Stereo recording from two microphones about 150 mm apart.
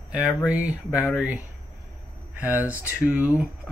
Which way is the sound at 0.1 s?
5° right (ahead or behind).